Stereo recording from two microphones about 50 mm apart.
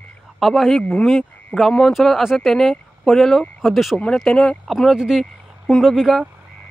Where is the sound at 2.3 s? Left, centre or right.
Centre.